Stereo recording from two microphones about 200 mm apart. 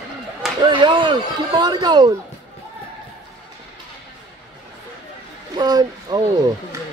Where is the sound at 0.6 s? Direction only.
25° right (ahead or behind).